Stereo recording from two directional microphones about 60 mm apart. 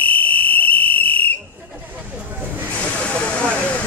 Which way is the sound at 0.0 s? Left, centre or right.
Left.